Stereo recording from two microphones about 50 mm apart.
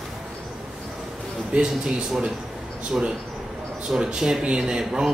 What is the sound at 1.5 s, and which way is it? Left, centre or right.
Speech, centre.